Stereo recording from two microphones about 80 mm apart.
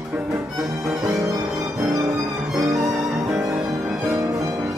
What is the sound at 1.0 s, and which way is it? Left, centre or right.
Music, right.